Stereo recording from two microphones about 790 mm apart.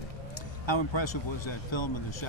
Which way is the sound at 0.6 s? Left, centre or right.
Left.